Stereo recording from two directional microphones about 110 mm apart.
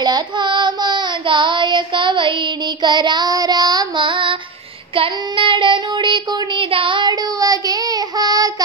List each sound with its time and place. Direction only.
0.0 s child singing: 40° right (ahead or behind)
7.3 s child singing: 35° right (ahead or behind)